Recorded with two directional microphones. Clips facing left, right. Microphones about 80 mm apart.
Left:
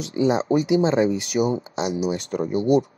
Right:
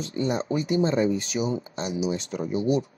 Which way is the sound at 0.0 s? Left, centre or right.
Left.